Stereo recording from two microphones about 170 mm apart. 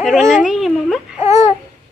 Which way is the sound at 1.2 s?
20° right (ahead or behind).